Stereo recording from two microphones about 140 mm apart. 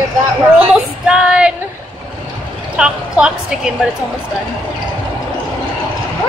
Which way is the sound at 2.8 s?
5° right (ahead or behind).